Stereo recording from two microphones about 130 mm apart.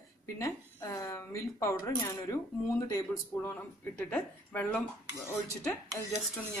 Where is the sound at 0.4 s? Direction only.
25° left (ahead or behind).